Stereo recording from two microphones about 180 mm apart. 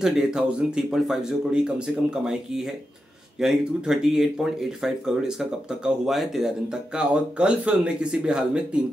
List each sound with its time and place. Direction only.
0.0 s speech: 5° right (ahead or behind)